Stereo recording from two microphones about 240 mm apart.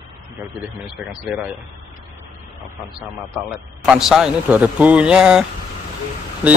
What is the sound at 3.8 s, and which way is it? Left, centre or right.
A man's voice, centre.